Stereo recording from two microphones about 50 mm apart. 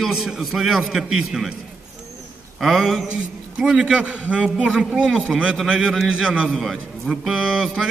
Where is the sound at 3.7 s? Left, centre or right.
Centre.